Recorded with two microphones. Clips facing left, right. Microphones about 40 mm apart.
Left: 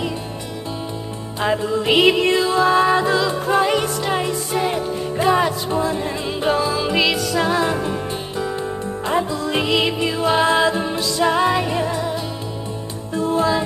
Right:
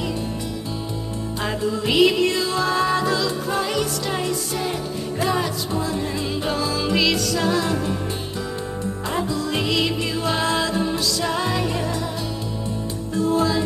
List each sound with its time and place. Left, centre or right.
1.4 s music: left
9.0 s music: left
13.1 s music: left